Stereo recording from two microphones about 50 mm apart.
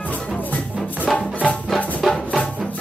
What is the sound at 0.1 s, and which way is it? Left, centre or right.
Music, left.